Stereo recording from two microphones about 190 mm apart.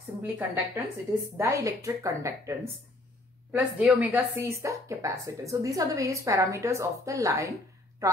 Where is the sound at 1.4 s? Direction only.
15° right (ahead or behind).